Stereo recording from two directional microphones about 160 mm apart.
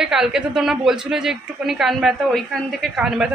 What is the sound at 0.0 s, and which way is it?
A woman's voice, 5° right (ahead or behind).